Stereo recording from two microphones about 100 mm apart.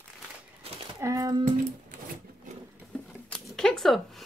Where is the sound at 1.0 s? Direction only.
35° right (ahead or behind).